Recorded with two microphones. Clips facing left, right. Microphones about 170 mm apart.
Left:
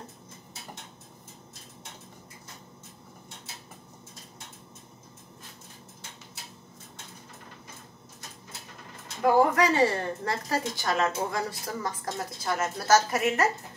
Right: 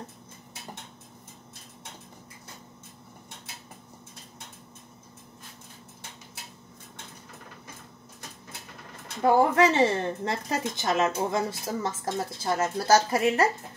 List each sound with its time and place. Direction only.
9.2 s a woman's voice: 25° right (ahead or behind)